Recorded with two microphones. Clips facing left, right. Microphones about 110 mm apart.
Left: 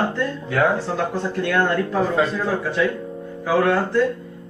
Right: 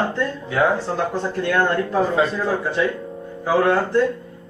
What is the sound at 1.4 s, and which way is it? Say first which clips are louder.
Speech: right 1 dB; 25° right (ahead or behind).